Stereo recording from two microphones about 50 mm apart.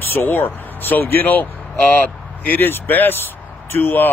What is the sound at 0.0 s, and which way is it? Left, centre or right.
Speech, left.